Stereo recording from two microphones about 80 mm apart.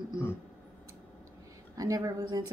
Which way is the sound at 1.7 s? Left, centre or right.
Right.